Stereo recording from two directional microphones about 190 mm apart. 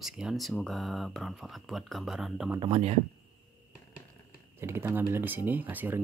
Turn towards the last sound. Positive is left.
turn(degrees=-10)  # may be behind; listen again after turning